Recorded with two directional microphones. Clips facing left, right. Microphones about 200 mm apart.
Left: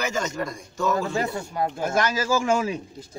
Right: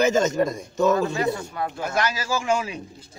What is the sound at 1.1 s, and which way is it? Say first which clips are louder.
A man's voice: right 1 dB; 35° left (ahead or behind).